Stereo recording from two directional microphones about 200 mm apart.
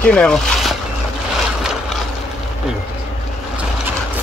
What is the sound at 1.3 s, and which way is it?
Boat, centre (ahead or behind).